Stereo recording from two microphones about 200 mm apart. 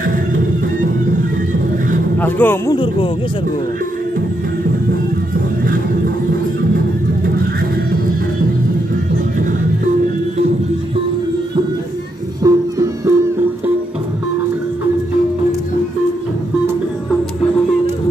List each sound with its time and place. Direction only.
0.0 s music: 40° right (ahead or behind)
2.1 s speech: 10° left (ahead or behind)
2.7 s speech: 25° left (ahead or behind)
12.4 s music: 15° right (ahead or behind)